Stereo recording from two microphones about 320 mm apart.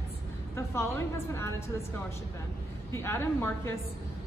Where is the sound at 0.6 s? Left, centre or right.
Centre.